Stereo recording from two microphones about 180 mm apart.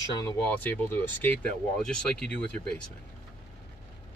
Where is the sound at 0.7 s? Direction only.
10° left (ahead or behind).